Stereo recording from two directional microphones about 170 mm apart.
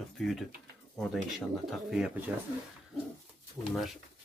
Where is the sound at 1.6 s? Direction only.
Centre (ahead or behind).